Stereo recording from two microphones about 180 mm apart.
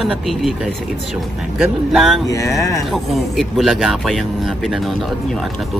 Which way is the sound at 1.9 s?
Centre (ahead or behind).